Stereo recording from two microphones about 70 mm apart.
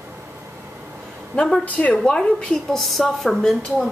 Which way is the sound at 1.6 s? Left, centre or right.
Centre.